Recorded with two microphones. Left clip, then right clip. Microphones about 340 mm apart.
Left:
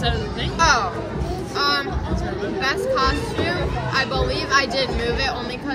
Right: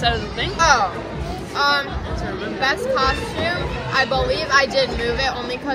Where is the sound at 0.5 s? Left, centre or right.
Centre.